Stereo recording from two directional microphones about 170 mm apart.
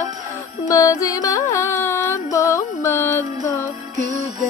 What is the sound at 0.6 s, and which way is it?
Music, 20° left (ahead or behind).